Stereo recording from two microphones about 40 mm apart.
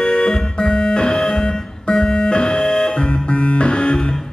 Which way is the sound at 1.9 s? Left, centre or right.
Centre.